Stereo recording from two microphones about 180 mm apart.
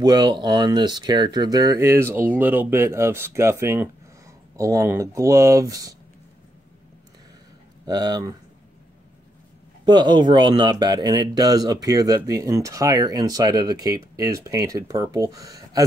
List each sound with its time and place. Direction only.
0.0 s speech: 20° right (ahead or behind)
7.8 s speech: 20° right (ahead or behind)
9.8 s speech: 25° right (ahead or behind)